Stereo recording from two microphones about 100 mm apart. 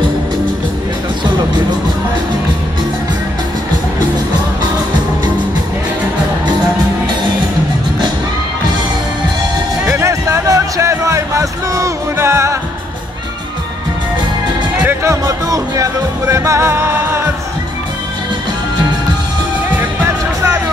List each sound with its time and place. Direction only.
10.0 s a sound: 30° right (ahead or behind)
15.0 s music: 35° right (ahead or behind)
19.8 s music: 20° right (ahead or behind)